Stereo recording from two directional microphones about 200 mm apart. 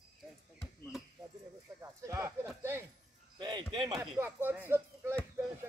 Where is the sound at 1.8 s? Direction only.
15° right (ahead or behind).